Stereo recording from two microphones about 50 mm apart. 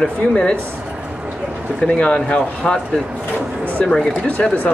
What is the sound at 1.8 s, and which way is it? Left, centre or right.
Speech, centre.